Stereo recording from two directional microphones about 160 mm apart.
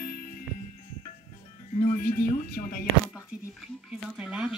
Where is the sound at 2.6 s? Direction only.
40° left (ahead or behind).